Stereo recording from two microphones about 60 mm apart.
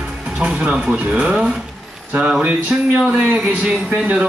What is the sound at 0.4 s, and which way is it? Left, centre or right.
Speech, centre.